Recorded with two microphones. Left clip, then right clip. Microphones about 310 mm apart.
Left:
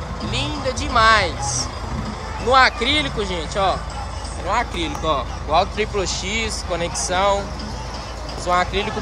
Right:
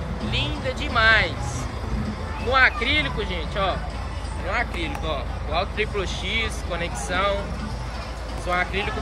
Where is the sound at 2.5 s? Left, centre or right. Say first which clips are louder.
Left 4 dB; centre.